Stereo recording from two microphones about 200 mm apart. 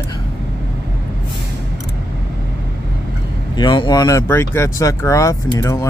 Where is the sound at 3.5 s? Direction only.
20° left (ahead or behind).